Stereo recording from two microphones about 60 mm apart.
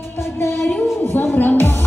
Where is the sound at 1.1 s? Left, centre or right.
Left.